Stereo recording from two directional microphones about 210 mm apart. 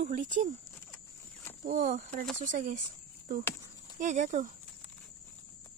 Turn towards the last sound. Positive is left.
turn(degrees=-40)  # may be behind; listen again after turning